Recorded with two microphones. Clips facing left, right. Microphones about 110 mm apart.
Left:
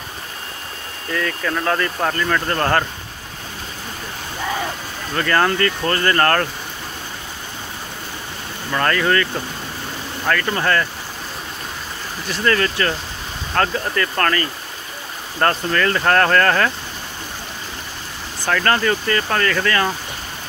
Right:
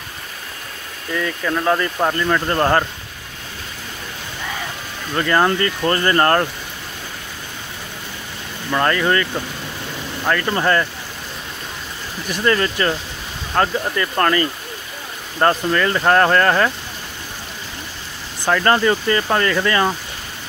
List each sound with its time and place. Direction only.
1.1 s speech: 10° right (ahead or behind)
5.1 s speech: 15° right (ahead or behind)
8.7 s speech: 15° right (ahead or behind)
12.3 s speech: 20° right (ahead or behind)
18.4 s speech: 20° right (ahead or behind)